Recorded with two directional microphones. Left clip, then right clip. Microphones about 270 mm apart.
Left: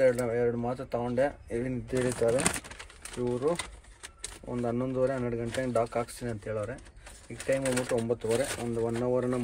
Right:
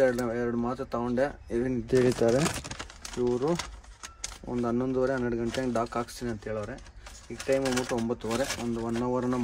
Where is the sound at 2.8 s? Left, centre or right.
Right.